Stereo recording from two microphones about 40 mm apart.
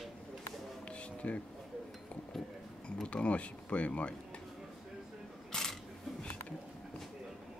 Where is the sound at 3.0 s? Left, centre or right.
Left.